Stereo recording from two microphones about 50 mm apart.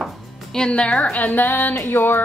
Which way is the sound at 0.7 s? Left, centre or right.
Left.